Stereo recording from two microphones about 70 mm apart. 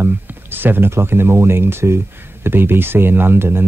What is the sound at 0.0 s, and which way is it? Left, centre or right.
Speech, right.